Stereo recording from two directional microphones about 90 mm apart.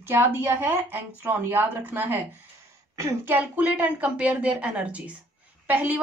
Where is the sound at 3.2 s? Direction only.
20° right (ahead or behind).